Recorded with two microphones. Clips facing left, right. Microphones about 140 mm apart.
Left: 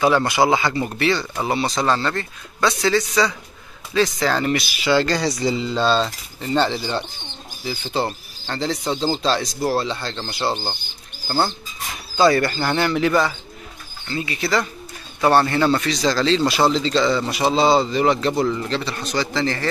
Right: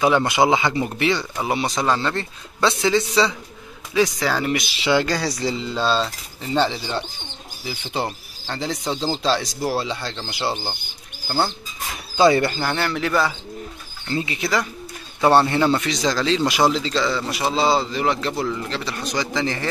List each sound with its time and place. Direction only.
0.0 s a man's voice: 20° right (ahead or behind)
2.1 s speech: 25° right (ahead or behind)
3.9 s a man's voice: 10° right (ahead or behind)
4.6 s speech: 25° right (ahead or behind)
4.9 s a sound: 10° right (ahead or behind)
7.6 s a man's voice: 10° right (ahead or behind)
8.9 s speech: 5° left (ahead or behind)
9.2 s a man's voice: 10° right (ahead or behind)
12.2 s speech: 20° right (ahead or behind)
12.4 s a sound: centre (ahead or behind)
14.1 s a man's voice: 20° right (ahead or behind); by 18.3 s centre (ahead or behind)
18.4 s a sound: centre (ahead or behind)
18.9 s a man's voice: 10° right (ahead or behind)